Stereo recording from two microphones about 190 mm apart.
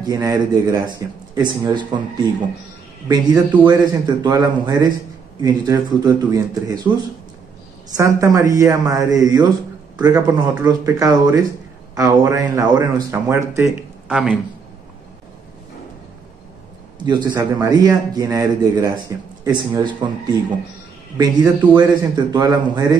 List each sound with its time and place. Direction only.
0.0 s a man's voice: 20° right (ahead or behind)
3.6 s a man's voice: 20° right (ahead or behind)
7.9 s speech: 15° right (ahead or behind)
17.0 s a man's voice: 20° right (ahead or behind)